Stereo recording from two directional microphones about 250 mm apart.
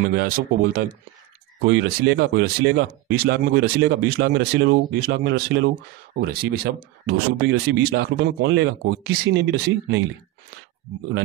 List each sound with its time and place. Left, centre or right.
0.2 s speech: right